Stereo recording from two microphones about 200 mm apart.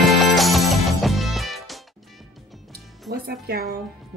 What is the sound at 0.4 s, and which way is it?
Music, centre (ahead or behind).